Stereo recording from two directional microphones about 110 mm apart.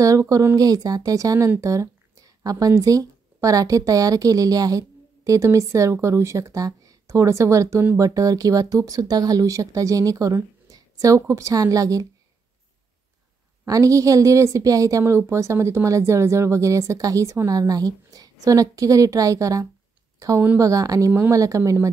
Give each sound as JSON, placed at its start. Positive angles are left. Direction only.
{"t": 0.0, "sound": "speech", "side_deg": -30}
{"t": 13.7, "sound": "a woman's voice", "side_deg": -30}